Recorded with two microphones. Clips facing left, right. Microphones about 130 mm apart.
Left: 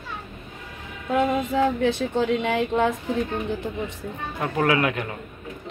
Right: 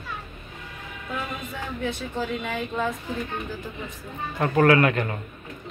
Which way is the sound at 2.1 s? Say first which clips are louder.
Left 5 dB; 75° left (ahead or behind).